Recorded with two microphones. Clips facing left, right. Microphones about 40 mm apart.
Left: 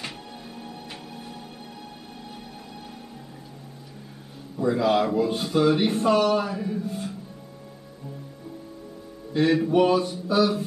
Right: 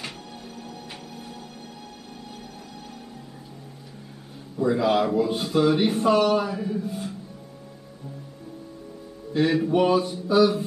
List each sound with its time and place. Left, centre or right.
0.6 s music: centre
4.6 s speech: centre
9.3 s speech: centre